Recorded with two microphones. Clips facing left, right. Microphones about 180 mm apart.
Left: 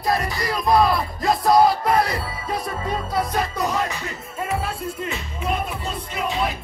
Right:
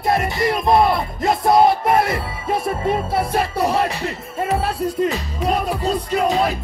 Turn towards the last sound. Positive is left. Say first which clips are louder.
# right 7 dB
turn(degrees=-40)  # may be behind; listen again after turning